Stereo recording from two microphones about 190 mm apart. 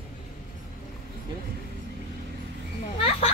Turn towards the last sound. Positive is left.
turn(degrees=30)  # may be behind; listen again after turning